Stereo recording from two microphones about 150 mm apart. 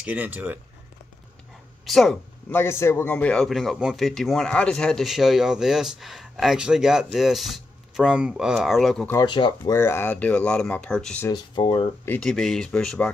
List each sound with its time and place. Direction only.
0.0 s speech: 10° right (ahead or behind)
1.9 s speech: centre (ahead or behind)
2.5 s speech: 15° left (ahead or behind)
9.1 s speech: 30° left (ahead or behind)
9.8 s speech: 15° left (ahead or behind)
11.2 s speech: 30° left (ahead or behind)
12.0 s speech: 15° left (ahead or behind)
12.3 s speech: centre (ahead or behind)